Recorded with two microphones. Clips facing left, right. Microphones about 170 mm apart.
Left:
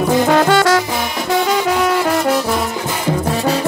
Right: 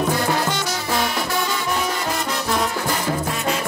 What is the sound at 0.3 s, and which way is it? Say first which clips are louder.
Music: left 11 dB; 90° left.